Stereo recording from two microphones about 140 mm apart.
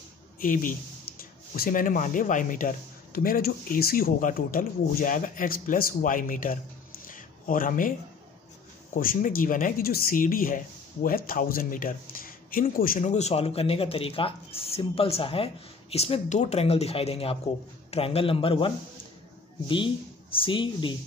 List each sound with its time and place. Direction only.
0.4 s a man's voice: 75° left (ahead or behind)
8.9 s a man's voice: 75° left (ahead or behind); by 18.7 s 40° left (ahead or behind)
20.3 s a man's voice: 35° left (ahead or behind)